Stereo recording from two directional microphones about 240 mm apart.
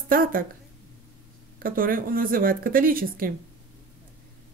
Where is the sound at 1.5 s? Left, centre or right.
Right.